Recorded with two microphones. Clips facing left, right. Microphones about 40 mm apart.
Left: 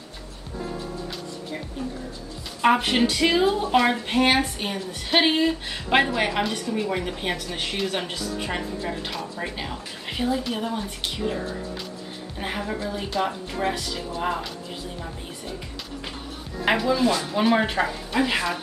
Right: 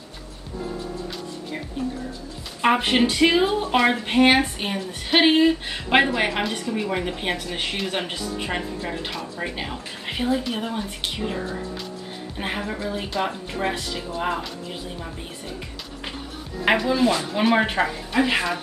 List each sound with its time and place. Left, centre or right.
2.6 s speech: centre
12.4 s speech: centre
16.6 s speech: centre